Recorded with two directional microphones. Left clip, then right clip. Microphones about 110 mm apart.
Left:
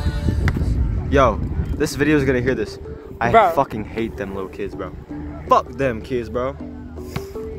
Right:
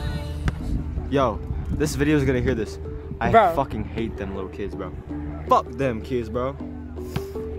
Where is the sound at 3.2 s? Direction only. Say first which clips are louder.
Left 3 dB; 30° left (ahead or behind).